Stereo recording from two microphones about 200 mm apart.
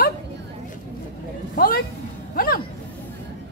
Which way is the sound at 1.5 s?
45° left (ahead or behind).